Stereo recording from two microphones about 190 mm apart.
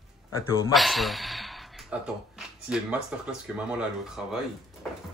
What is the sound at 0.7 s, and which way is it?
A man's voice, centre (ahead or behind).